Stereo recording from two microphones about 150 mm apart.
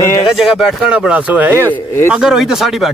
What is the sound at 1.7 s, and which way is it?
Speech, 15° left (ahead or behind).